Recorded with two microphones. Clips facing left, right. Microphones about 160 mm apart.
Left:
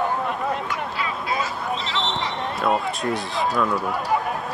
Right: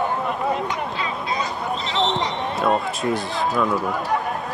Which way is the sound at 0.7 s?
20° right (ahead or behind).